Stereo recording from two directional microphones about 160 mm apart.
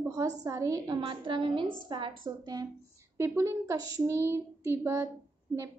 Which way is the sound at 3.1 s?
15° right (ahead or behind).